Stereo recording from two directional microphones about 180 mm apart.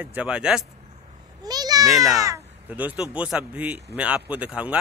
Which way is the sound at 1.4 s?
20° right (ahead or behind).